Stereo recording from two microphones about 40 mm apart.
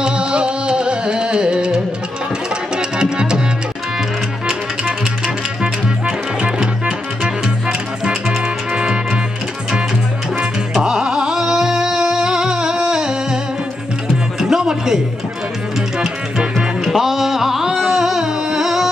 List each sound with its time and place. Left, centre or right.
0.0 s music: right
4.5 s music: centre
10.8 s music: centre
16.0 s music: centre